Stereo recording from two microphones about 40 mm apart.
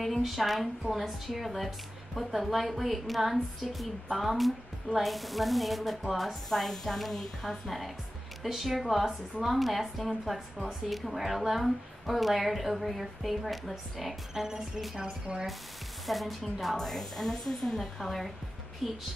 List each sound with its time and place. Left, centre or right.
0.0 s speech: centre
14.3 s music: centre
15.0 s speech: centre
16.1 s a woman's voice: centre